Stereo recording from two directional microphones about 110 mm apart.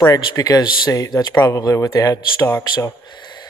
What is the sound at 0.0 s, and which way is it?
Speech, 40° left (ahead or behind).